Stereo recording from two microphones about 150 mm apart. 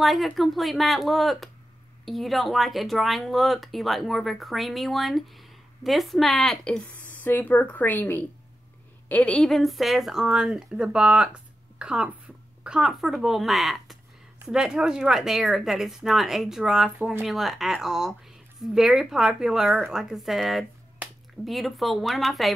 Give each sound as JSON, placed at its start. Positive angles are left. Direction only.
{"t": 0.0, "sound": "speech", "side_deg": 0}